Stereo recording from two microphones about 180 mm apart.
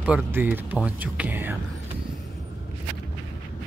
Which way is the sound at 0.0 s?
10° right (ahead or behind).